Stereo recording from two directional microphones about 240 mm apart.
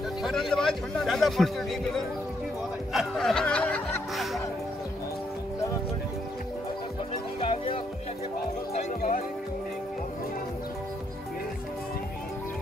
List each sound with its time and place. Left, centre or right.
0.2 s speech: centre
2.9 s music: centre
7.3 s music: left
8.7 s speech: left